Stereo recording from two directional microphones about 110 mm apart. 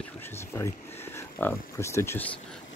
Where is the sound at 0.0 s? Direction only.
20° left (ahead or behind).